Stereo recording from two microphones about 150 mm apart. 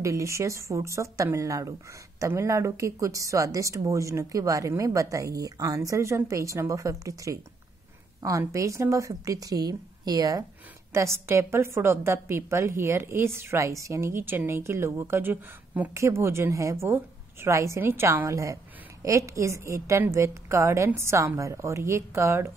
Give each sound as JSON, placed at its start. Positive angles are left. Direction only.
{"t": 0.0, "sound": "a woman's voice", "side_deg": -20}